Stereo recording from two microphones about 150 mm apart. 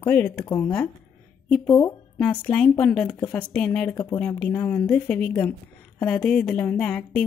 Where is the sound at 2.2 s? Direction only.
5° left (ahead or behind).